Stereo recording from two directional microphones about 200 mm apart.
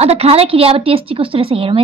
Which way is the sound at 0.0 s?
30° right (ahead or behind).